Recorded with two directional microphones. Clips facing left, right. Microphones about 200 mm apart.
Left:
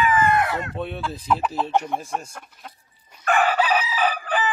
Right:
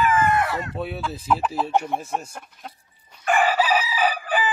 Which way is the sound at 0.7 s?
5° right (ahead or behind).